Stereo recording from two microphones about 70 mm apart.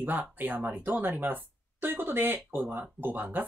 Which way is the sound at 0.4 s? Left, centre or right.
Right.